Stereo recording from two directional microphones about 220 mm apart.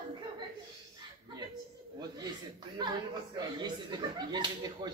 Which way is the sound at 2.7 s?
20° right (ahead or behind).